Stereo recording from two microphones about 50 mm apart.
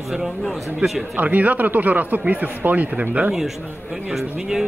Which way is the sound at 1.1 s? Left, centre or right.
Right.